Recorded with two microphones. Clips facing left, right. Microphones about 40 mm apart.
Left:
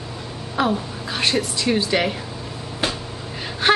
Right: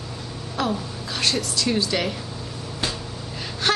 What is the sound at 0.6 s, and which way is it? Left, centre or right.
A woman's voice, left.